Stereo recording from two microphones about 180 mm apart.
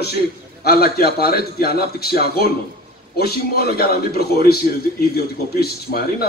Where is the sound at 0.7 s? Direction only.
60° left (ahead or behind).